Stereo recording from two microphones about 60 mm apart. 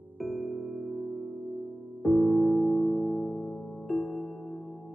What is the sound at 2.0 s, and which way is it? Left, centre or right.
Music, centre.